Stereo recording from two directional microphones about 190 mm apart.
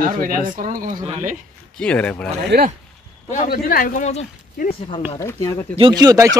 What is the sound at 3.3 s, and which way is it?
A man's voice, 45° left (ahead or behind).